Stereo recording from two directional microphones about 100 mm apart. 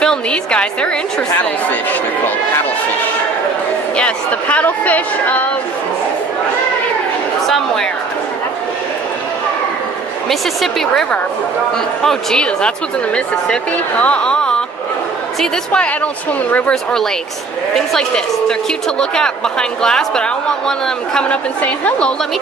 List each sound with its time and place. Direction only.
0.0 s a woman's voice: 10° left (ahead or behind)
1.9 s a sound: 20° left (ahead or behind)
3.9 s speech: 10° left (ahead or behind)
7.4 s a woman's voice: 5° left (ahead or behind)
10.6 s a woman's voice: 5° left (ahead or behind)
18.9 s speech: 10° left (ahead or behind)